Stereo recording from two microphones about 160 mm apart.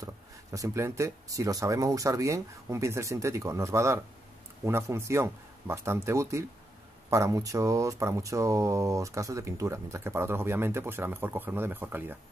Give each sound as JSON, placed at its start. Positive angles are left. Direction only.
{"t": 0.0, "sound": "speech", "side_deg": -20}